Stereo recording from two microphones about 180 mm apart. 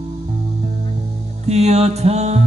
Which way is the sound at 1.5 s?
35° right (ahead or behind).